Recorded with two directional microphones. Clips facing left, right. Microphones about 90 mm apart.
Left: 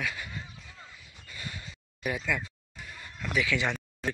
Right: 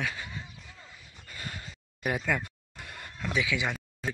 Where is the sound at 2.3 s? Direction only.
60° right (ahead or behind).